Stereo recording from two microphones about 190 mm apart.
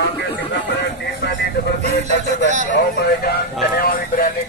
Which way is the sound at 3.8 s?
50° left (ahead or behind).